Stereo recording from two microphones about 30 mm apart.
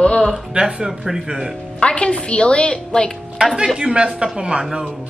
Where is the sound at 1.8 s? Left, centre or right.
Left.